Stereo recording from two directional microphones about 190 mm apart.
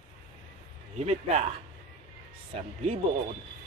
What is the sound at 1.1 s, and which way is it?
Chuckle, 35° right (ahead or behind).